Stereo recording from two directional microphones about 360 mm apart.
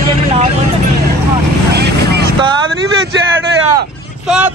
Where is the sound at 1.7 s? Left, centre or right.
Right.